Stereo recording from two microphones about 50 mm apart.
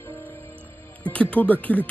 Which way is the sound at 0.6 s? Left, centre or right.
Left.